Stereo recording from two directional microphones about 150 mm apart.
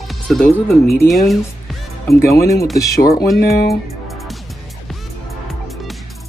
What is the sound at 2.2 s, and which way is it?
Speech, 20° left (ahead or behind).